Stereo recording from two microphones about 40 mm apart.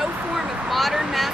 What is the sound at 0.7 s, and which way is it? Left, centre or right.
Speech, centre.